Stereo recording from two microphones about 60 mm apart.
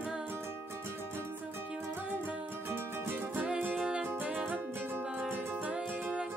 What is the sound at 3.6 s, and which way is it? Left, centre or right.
Music, right.